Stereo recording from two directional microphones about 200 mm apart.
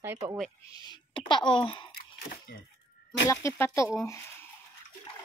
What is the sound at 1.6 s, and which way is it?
Speech, 25° left (ahead or behind).